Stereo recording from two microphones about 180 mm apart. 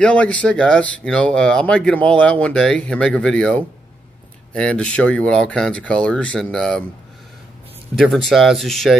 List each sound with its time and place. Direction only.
0.0 s speech: 5° left (ahead or behind)
8.0 s speech: centre (ahead or behind)